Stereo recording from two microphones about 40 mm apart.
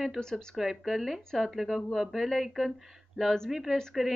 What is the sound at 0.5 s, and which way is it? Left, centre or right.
Speech, centre.